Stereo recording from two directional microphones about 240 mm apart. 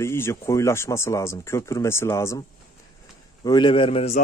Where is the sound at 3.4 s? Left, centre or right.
Centre.